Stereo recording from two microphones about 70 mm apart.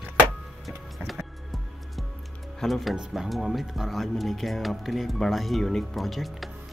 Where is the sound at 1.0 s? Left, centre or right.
Centre.